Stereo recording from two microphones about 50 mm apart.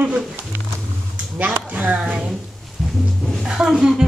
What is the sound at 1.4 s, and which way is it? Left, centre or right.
Speech, right.